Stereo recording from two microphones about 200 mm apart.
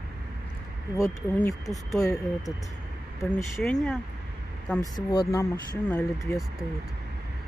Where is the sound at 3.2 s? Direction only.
15° left (ahead or behind).